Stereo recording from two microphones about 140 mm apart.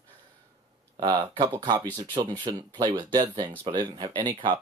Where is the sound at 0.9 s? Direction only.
30° right (ahead or behind).